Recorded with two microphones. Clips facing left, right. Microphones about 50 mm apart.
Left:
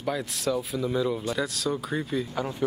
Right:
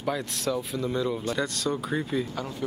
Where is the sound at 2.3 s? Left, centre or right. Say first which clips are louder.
Left 3 dB; centre.